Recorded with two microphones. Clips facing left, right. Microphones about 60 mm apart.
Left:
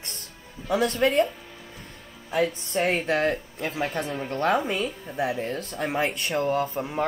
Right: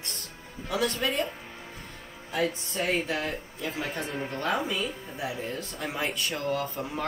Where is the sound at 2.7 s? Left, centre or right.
Left.